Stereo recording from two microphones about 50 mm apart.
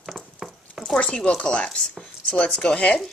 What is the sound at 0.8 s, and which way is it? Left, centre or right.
Speech, centre.